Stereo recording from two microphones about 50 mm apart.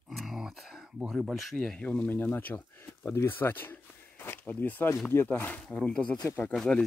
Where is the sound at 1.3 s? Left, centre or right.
Centre.